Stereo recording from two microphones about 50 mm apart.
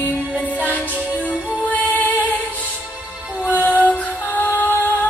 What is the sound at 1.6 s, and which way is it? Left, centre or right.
Music, left.